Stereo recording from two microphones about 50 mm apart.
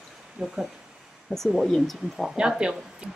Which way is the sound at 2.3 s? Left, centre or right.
Centre.